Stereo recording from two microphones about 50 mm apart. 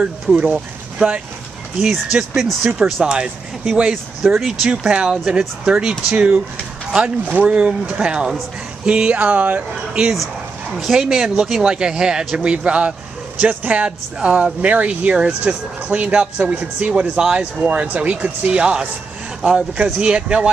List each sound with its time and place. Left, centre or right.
0.0 s speech: right
1.8 s speech: centre
7.4 s speech: right
10.1 s speech: centre; by 17.5 s right
17.6 s speech: right